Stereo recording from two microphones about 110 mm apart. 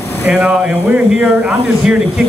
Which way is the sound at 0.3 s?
10° right (ahead or behind).